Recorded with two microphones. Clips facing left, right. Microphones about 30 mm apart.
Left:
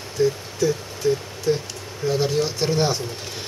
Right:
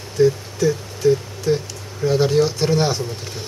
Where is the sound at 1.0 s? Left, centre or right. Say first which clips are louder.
Right 5 dB; centre.